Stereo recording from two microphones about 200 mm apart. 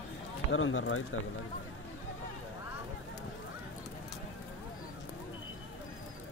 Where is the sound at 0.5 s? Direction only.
80° left.